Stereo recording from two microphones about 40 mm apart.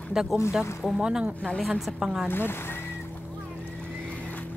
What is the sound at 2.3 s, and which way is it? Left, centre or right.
Speech, left.